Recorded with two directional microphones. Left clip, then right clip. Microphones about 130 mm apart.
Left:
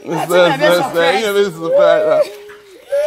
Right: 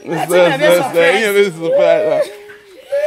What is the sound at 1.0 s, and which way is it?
A man's voice, 20° right (ahead or behind).